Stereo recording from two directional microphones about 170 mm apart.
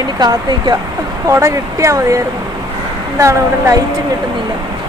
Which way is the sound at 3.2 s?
20° right (ahead or behind).